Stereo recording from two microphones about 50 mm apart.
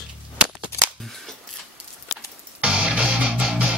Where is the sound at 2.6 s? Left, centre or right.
Right.